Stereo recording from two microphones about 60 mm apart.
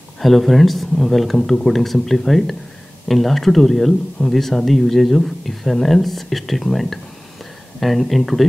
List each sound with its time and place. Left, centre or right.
0.2 s speech: centre